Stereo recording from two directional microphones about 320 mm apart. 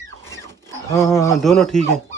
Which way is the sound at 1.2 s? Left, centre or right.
Centre.